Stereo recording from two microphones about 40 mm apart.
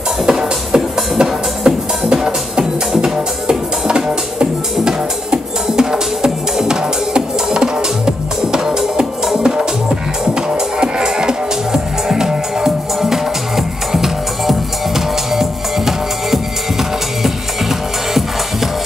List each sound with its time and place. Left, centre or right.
0.3 s music: centre
10.5 s music: centre